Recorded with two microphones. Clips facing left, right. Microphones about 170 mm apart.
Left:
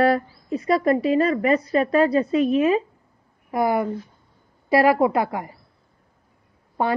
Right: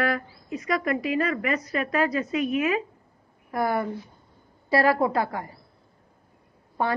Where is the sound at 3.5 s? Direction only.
20° left (ahead or behind).